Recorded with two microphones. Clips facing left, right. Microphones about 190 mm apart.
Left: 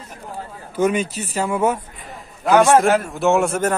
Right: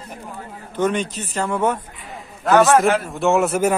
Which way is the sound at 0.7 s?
10° left (ahead or behind).